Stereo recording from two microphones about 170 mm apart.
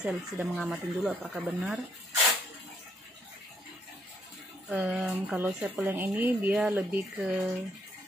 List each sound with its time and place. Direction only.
0.0 s speech: centre (ahead or behind)
4.6 s speech: 5° right (ahead or behind)